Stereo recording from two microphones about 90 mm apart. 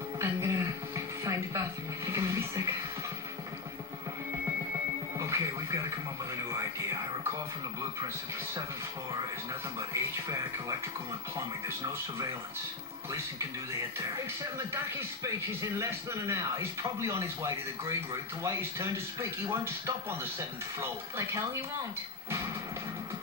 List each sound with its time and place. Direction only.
0.2 s a sound: 30° right (ahead or behind)
2.0 s music: 35° right (ahead or behind)
5.2 s television: 35° right (ahead or behind)
9.8 s a man's voice: 35° right (ahead or behind)
14.4 s a man's voice: 35° right (ahead or behind)